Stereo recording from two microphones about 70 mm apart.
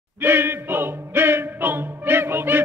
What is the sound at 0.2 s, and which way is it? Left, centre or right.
Music, right.